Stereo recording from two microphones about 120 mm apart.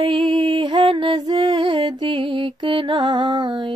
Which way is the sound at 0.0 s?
45° right (ahead or behind).